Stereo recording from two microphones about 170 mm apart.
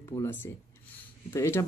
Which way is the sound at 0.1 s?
15° left (ahead or behind).